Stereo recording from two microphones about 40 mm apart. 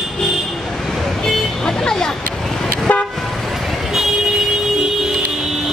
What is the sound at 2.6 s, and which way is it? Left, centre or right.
Toot, left.